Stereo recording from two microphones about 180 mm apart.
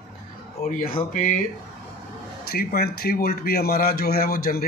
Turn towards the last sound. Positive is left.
turn(degrees=55)  # may be behind; listen again after turning